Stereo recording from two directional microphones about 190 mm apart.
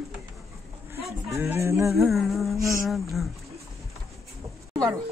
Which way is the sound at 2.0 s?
Centre (ahead or behind).